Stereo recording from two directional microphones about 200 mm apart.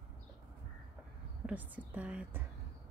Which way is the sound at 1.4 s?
10° right (ahead or behind).